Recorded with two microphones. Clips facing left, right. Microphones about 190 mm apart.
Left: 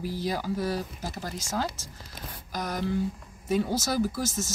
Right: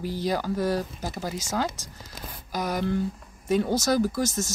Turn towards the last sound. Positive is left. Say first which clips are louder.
# right 3 dB
turn(degrees=5)  # may be behind; listen again after turning